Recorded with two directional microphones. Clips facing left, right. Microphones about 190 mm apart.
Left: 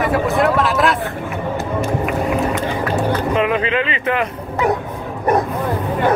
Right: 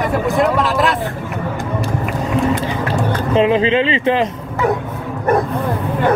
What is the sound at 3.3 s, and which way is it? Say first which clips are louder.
Speech: right 9 dB; 30° right (ahead or behind).